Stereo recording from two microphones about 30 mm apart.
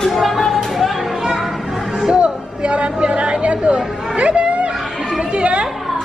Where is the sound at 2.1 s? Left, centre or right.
Right.